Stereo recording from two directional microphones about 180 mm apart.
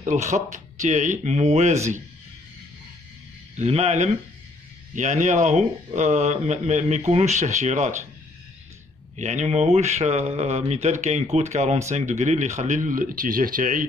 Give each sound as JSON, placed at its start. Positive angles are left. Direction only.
{"t": 0.0, "sound": "speech", "side_deg": -40}
{"t": 3.5, "sound": "speech", "side_deg": -35}
{"t": 9.1, "sound": "speech", "side_deg": -40}